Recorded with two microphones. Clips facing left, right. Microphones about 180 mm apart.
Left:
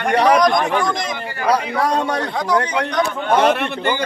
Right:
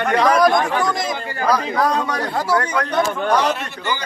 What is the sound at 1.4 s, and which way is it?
Speech, 30° left (ahead or behind).